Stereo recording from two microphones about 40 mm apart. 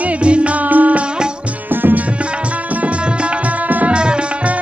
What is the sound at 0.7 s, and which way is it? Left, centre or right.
Music, right.